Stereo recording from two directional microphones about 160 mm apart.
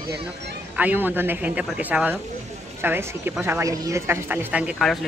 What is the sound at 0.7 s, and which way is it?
A woman's voice, 10° right (ahead or behind).